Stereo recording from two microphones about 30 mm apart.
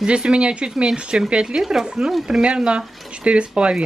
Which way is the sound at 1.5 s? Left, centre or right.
Centre.